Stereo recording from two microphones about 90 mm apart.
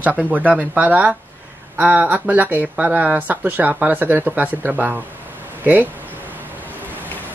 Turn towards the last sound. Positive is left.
turn(degrees=-20)  # may be behind; listen again after turning